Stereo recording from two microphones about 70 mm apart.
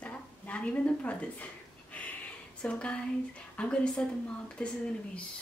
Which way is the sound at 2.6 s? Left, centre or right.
Centre.